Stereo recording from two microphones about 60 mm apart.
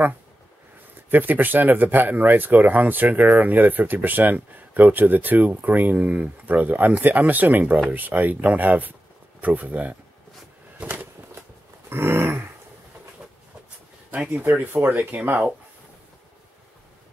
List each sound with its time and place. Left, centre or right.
1.1 s speech: right
10.8 s a sound: right
11.9 s dog: right
14.3 s speech: right